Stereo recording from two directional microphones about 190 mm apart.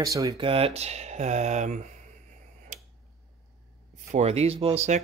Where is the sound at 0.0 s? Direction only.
15° right (ahead or behind).